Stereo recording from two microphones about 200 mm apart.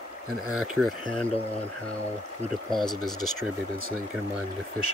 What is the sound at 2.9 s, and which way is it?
Speech, 20° left (ahead or behind).